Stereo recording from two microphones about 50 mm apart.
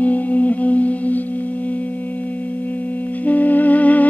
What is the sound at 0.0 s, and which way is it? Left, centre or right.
Music, left.